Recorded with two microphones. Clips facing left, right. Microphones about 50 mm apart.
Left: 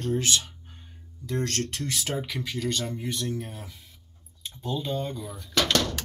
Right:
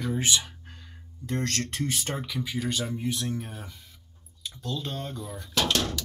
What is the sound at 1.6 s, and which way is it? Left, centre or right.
Speech, left.